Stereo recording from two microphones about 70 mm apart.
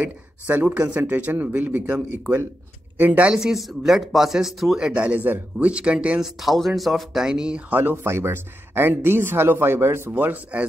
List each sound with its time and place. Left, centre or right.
0.0 s speech: right
3.0 s speech: right
3.3 s speech: centre
6.4 s speech: centre
7.2 s speech: centre
7.7 s speech: right